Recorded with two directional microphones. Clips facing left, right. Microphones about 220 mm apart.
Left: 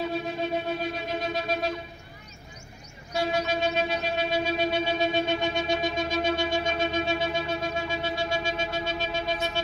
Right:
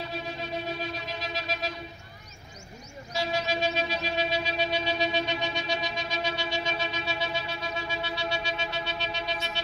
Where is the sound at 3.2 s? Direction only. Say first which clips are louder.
Left 3 dB; 55° left (ahead or behind).